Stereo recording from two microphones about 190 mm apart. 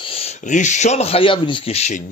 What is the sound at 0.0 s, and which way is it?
Speech, 30° left (ahead or behind).